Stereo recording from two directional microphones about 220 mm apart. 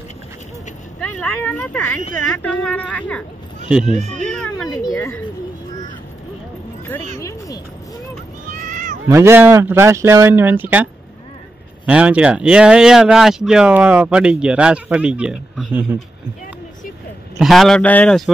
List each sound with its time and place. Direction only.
1.2 s speech: 5° left (ahead or behind)
3.8 s speech: 30° right (ahead or behind)
4.6 s speech: 15° left (ahead or behind)
7.2 s speech: 15° left (ahead or behind)
8.5 s cat: 35° right (ahead or behind)
9.0 s speech: 10° right (ahead or behind)
17.4 s speech: centre (ahead or behind)